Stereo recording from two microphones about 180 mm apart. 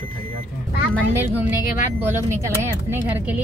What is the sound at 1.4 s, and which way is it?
Speech, 10° right (ahead or behind).